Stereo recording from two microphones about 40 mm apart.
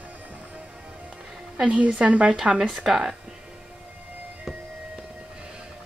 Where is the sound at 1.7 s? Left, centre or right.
Right.